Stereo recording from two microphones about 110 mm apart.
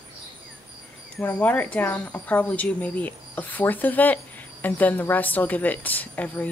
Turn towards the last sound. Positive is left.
turn(degrees=15)  # may be behind; listen again after turning